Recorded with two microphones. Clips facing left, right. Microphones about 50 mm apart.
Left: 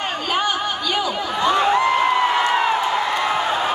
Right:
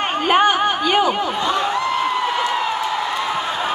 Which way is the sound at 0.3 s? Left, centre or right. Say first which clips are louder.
Right 7 dB; right.